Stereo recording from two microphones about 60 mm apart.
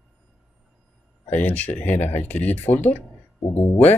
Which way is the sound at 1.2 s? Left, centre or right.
Left.